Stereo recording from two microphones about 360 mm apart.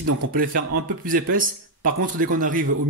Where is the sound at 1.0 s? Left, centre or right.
Right.